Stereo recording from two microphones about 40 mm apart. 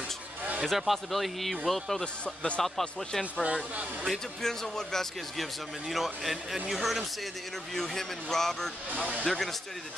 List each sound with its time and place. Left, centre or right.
0.7 s a man's voice: centre
2.2 s speech: left
2.6 s speech: centre
5.4 s a man's voice: centre
7.7 s speech: centre